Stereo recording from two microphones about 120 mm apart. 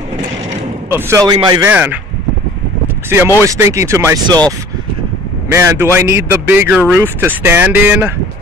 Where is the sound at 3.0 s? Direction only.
20° right (ahead or behind).